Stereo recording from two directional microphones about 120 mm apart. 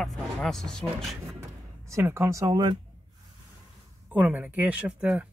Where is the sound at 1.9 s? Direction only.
25° right (ahead or behind).